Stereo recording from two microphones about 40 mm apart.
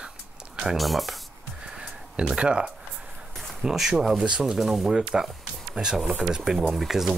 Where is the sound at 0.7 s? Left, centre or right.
Centre.